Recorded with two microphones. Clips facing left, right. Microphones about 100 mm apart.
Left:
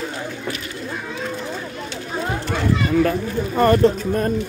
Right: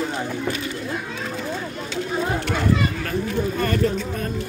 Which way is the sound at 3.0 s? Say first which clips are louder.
Left 5 dB; 35° left (ahead or behind).